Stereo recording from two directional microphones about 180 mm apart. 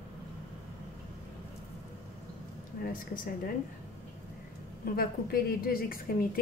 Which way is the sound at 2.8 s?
50° left (ahead or behind).